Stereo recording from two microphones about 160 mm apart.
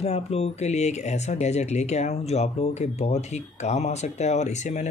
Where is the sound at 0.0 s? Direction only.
40° left (ahead or behind).